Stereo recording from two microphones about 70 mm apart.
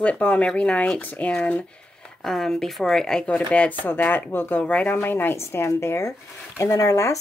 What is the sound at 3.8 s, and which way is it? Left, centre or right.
Speech, left.